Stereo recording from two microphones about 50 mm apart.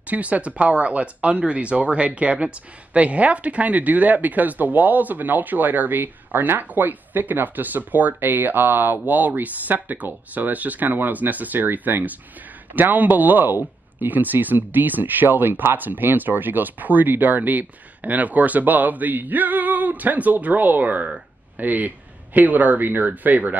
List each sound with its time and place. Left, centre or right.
0.0 s speech: right